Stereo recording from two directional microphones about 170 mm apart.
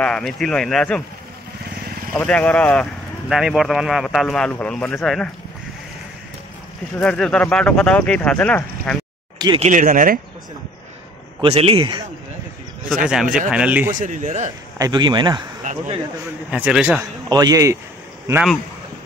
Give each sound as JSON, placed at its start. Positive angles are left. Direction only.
{"t": 0.0, "sound": "speech", "side_deg": 5}
{"t": 2.1, "sound": "speech", "side_deg": 5}
{"t": 7.0, "sound": "speech", "side_deg": 5}
{"t": 9.6, "sound": "speech", "side_deg": -50}
{"t": 11.4, "sound": "a man's voice", "side_deg": -35}
{"t": 13.0, "sound": "speech", "side_deg": -5}
{"t": 13.9, "sound": "speech", "side_deg": -50}
{"t": 14.8, "sound": "speech", "side_deg": -25}
{"t": 15.6, "sound": "speech", "side_deg": -50}
{"t": 16.4, "sound": "speech", "side_deg": -5}
{"t": 17.3, "sound": "speech", "side_deg": -20}